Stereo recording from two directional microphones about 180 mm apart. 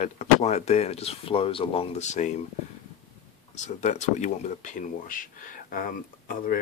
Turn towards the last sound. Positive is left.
turn(degrees=50)  # may be behind; listen again after turning